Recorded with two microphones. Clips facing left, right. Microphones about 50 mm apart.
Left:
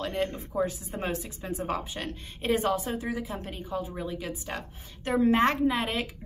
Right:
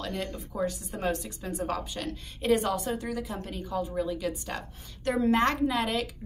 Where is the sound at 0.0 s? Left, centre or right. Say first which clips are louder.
Left 4 dB; left.